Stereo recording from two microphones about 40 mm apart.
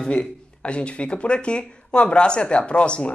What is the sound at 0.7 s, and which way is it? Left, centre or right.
Speech, left.